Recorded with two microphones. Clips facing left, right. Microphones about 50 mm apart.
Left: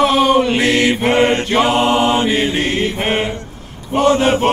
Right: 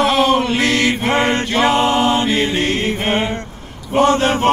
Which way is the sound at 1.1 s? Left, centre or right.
Left.